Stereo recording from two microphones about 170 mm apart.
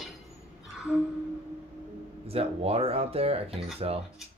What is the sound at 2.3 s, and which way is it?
Speech, 35° right (ahead or behind).